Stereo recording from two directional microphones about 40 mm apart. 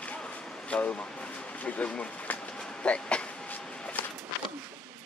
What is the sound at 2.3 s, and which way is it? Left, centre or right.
Train, left.